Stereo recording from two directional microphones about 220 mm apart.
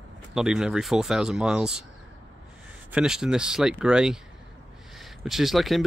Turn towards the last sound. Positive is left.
turn(degrees=0)  # may be behind; listen again after turning